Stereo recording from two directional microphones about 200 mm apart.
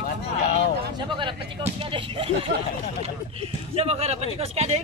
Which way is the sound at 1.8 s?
25° right (ahead or behind).